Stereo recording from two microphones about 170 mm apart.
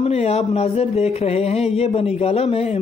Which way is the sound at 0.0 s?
35° left (ahead or behind).